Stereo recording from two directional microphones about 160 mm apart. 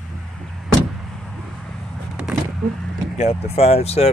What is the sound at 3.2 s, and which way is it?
Speech, 40° left (ahead or behind).